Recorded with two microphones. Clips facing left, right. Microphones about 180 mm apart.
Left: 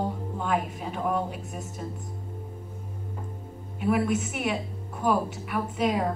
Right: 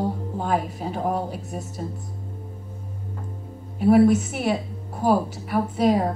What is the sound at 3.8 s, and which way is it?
A woman's voice, 35° right (ahead or behind).